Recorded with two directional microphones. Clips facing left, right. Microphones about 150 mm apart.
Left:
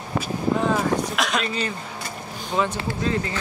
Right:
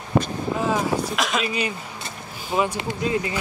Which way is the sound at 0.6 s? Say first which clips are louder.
Right 1 dB; centre (ahead or behind).